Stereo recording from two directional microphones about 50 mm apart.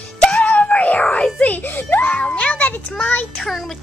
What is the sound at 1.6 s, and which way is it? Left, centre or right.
Speech, left.